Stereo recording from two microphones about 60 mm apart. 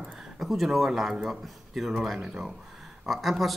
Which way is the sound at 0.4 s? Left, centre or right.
Centre.